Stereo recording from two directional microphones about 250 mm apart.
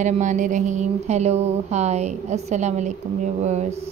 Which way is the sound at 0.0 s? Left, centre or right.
Right.